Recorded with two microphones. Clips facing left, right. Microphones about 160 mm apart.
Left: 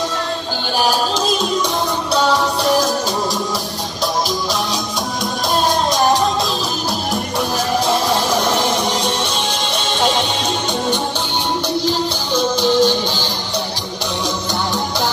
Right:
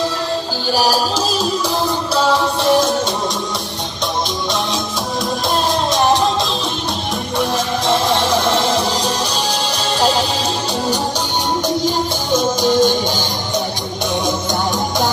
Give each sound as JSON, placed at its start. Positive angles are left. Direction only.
{"t": 2.1, "sound": "music", "side_deg": 0}
{"t": 5.7, "sound": "music", "side_deg": 0}
{"t": 7.3, "sound": "music", "side_deg": 0}
{"t": 8.5, "sound": "music", "side_deg": -30}
{"t": 12.6, "sound": "music", "side_deg": -45}